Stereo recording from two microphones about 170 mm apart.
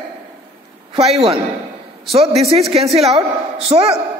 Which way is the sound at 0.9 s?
35° right (ahead or behind).